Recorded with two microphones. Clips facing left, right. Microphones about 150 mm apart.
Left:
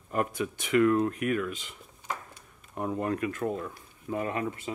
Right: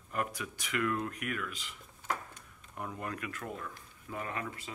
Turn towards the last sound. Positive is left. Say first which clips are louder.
# left 8 dB
turn(degrees=25)  # may be behind; listen again after turning